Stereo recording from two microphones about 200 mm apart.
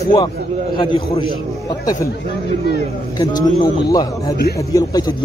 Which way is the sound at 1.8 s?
15° left (ahead or behind).